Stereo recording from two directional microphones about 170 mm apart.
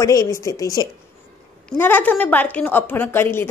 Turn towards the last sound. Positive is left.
turn(degrees=15)  # may be behind; listen again after turning